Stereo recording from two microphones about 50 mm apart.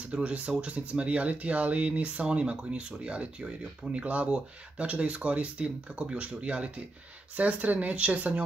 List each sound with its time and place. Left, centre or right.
0.1 s speech: right